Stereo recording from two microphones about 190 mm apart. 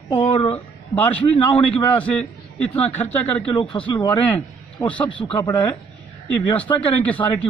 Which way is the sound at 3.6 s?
25° left (ahead or behind).